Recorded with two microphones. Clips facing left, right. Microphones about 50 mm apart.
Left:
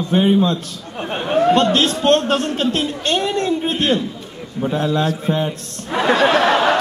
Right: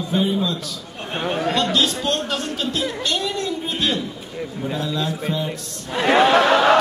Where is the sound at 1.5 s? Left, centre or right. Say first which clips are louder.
Left 5 dB; left.